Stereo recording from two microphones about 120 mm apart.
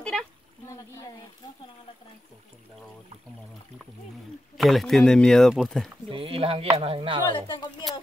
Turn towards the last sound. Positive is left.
turn(degrees=40)  # may be behind; listen again after turning